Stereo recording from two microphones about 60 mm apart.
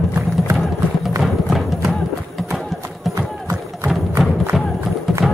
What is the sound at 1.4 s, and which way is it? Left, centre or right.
Music, centre.